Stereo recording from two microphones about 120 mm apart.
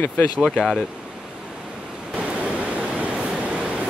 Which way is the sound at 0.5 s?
Centre (ahead or behind).